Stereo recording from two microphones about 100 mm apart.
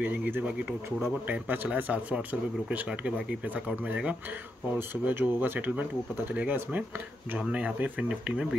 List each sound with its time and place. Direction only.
0.0 s speech: 20° right (ahead or behind)